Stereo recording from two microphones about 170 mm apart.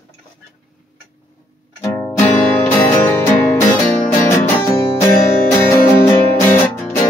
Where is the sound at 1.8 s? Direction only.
15° left (ahead or behind).